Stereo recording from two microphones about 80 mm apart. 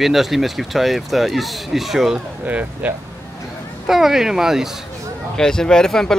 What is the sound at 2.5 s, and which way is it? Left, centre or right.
Speech, centre.